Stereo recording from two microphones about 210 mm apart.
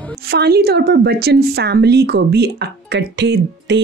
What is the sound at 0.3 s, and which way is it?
A woman's voice, 50° right (ahead or behind).